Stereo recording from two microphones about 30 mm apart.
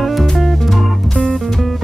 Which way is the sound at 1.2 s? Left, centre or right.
Left.